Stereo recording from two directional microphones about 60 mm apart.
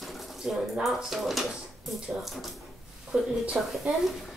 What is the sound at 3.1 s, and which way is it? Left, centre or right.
Speech, right.